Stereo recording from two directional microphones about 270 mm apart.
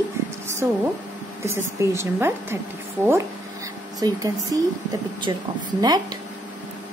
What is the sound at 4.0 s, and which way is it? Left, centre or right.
A woman's voice, centre.